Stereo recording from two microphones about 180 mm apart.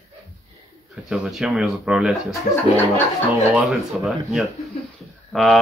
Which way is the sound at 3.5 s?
Centre (ahead or behind).